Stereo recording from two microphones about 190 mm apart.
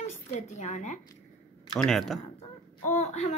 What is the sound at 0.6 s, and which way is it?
Speech, 40° left (ahead or behind).